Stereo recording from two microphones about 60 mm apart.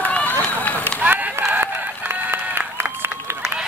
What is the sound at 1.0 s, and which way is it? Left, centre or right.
Run, right.